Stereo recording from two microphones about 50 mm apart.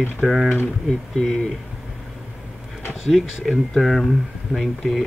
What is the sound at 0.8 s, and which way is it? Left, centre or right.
Speech, centre.